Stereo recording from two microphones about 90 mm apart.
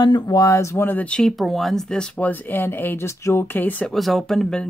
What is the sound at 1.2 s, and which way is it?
Speech, 5° left (ahead or behind).